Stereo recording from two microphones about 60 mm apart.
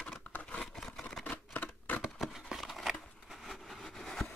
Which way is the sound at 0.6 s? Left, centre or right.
Centre.